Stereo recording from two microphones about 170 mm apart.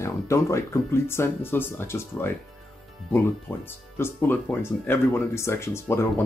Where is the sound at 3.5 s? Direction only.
15° left (ahead or behind).